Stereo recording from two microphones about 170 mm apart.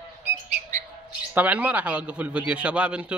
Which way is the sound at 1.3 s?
10° right (ahead or behind).